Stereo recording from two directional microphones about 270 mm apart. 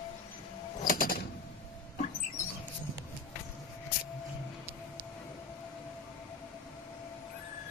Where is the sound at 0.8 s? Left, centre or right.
Left.